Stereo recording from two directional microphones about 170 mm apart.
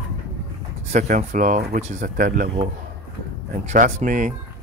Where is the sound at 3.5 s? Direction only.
50° right (ahead or behind).